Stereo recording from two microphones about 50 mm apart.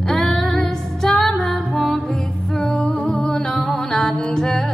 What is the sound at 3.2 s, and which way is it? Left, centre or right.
Music, left.